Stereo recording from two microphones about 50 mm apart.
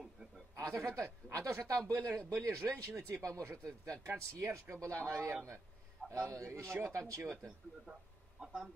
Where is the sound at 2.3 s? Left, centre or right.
Right.